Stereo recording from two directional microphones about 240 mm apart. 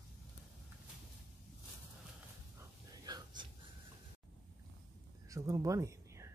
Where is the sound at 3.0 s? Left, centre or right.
Centre.